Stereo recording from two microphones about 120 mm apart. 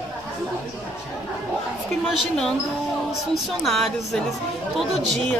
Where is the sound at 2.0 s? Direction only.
Centre (ahead or behind).